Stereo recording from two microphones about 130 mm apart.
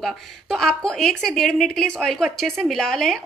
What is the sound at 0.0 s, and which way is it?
A woman's voice, 5° left (ahead or behind).